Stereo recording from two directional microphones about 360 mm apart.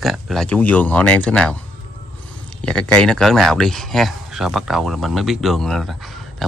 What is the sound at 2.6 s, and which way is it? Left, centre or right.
Speech, centre.